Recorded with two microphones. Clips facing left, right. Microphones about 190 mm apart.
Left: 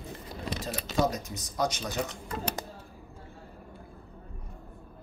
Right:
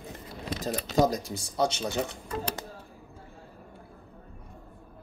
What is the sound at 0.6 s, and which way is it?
Speech, 35° right (ahead or behind).